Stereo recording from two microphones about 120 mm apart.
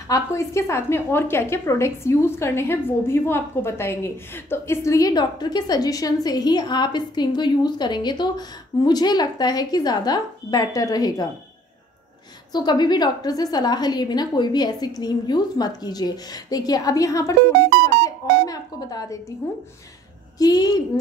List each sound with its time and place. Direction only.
0.1 s a woman's voice: 25° left (ahead or behind)
12.5 s a woman's voice: 35° left (ahead or behind)
20.3 s a woman's voice: 35° left (ahead or behind)